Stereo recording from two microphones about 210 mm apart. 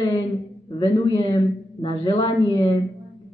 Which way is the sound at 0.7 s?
20° left (ahead or behind).